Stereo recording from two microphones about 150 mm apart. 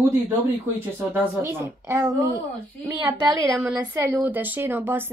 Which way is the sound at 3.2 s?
25° right (ahead or behind).